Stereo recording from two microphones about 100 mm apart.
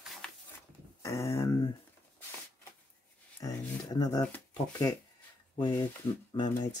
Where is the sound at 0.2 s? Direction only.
10° left (ahead or behind).